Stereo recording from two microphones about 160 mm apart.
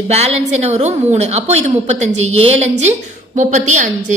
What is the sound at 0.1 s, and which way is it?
A woman's voice, 40° right (ahead or behind).